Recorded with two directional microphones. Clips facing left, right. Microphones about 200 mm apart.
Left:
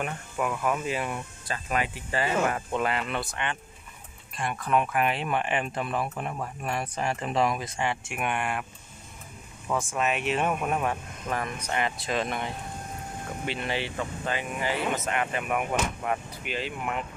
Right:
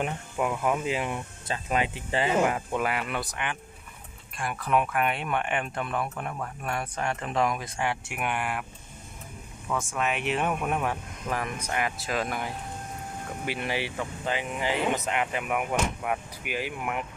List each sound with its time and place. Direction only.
0.0 s speech: 20° right (ahead or behind)
9.7 s speech: 5° left (ahead or behind); by 17.0 s 10° right (ahead or behind)